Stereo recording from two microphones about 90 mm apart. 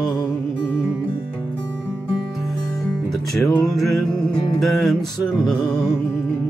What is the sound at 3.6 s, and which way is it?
Music, centre (ahead or behind).